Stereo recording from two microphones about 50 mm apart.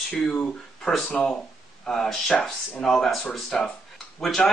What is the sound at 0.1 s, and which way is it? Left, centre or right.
Speech, left.